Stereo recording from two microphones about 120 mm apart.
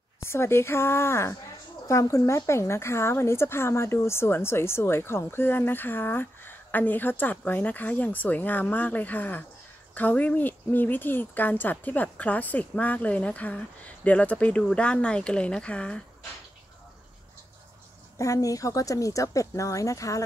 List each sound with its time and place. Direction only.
0.2 s speech: 20° left (ahead or behind)
18.1 s speech: 25° left (ahead or behind)